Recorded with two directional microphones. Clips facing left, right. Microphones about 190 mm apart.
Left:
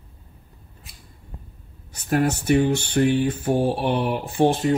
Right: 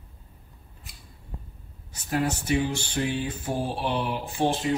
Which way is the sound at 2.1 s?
60° left (ahead or behind).